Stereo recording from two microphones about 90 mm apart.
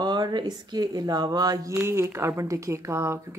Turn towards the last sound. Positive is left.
turn(degrees=-30)  # may be behind; listen again after turning